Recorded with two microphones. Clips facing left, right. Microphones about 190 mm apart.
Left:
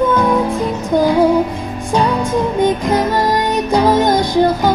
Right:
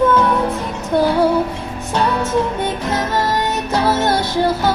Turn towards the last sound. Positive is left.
turn(degrees=15)  # may be behind; listen again after turning